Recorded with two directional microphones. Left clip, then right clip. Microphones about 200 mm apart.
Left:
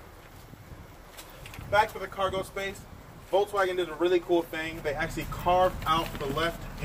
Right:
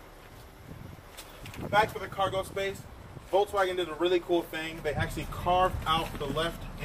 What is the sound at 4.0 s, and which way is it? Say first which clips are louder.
Speech: left 2 dB; 5° left (ahead or behind).